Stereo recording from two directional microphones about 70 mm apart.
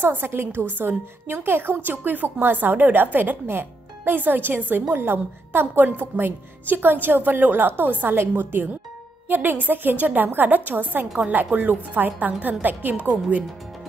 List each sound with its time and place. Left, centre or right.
0.0 s a woman's voice: right